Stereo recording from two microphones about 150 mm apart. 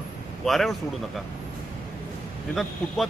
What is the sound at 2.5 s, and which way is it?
Speech, centre (ahead or behind).